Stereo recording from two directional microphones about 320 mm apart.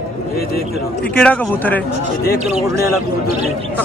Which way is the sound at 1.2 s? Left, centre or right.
Centre.